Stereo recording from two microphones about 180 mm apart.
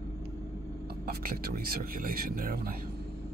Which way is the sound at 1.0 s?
55° right (ahead or behind).